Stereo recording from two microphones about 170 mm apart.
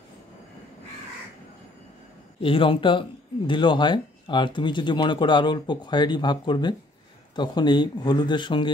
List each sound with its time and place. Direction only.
2.4 s speech: 30° left (ahead or behind)